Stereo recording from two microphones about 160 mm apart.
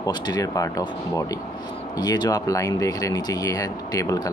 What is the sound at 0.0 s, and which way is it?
Speech, 25° left (ahead or behind).